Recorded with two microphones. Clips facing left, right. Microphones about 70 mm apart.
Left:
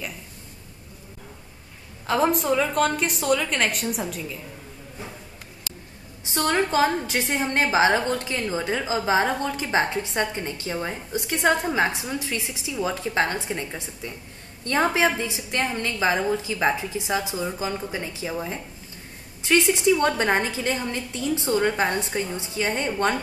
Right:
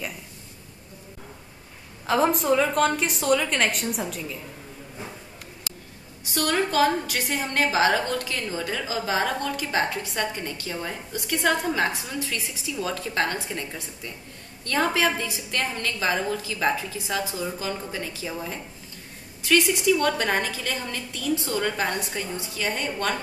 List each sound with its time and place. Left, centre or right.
2.0 s a woman's voice: centre
6.2 s a woman's voice: left